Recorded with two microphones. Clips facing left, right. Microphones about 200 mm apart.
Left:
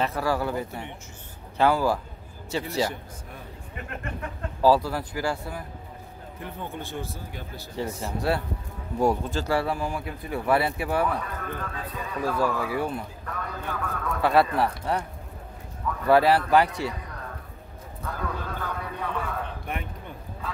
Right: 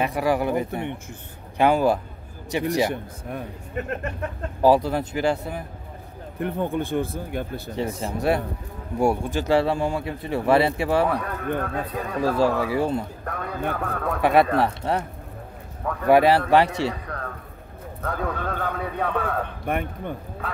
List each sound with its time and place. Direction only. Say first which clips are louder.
0.0 s speech: right 4 dB; 15° right (ahead or behind)
2.9 s a man's voice: right 9 dB; 60° right (ahead or behind)
4.6 s speech: right 3 dB; 20° right (ahead or behind)
6.4 s a man's voice: right 11 dB; 55° right (ahead or behind)
7.7 s speech: right 3 dB; 20° right (ahead or behind)
11.1 s a man's voice: right 5 dB; 65° right (ahead or behind)
12.2 s speech: right 5 dB; 30° right (ahead or behind)
13.2 s a man's voice: right 6 dB; 60° right (ahead or behind)
14.2 s speech: right 3 dB; 20° right (ahead or behind)
16.1 s speech: right 3 dB; 20° right (ahead or behind)
16.6 s speech: right 5 dB; 70° right (ahead or behind)
18.0 s a man's voice: right 5 dB; 60° right (ahead or behind)